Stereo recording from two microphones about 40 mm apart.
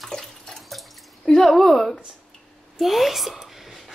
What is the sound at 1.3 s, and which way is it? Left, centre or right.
Speech, centre.